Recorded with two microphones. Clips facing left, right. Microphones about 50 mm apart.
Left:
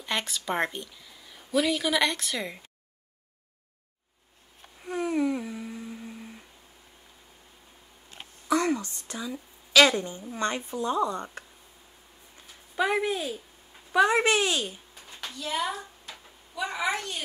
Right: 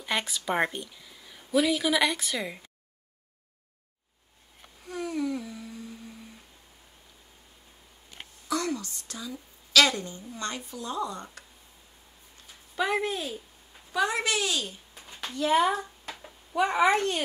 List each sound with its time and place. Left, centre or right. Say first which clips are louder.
0.0 s speech: right 1 dB; centre
4.8 s humming: left 4 dB; left
8.5 s a woman's voice: left 5 dB; left
12.7 s speech: left 2 dB; centre
13.9 s a woman's voice: left 5 dB; left
15.0 s a sound: right 1 dB; centre
15.3 s a woman's voice: right 7 dB; right